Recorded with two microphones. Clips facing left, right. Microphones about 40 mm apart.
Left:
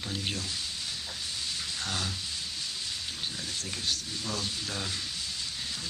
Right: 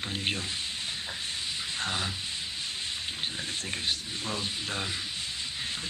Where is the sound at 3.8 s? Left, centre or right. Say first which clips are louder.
Left 1 dB; right.